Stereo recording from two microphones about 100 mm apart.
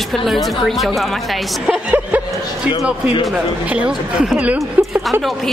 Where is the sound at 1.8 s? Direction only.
15° right (ahead or behind).